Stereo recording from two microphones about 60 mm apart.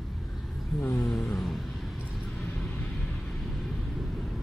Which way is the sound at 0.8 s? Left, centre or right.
Left.